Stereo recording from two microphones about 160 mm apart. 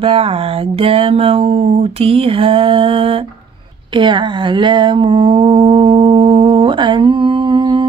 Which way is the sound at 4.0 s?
30° right (ahead or behind).